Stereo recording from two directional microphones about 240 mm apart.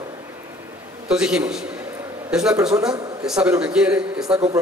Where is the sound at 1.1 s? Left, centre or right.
Centre.